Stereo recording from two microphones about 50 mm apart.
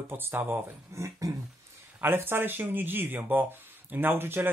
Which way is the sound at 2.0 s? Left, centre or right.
Right.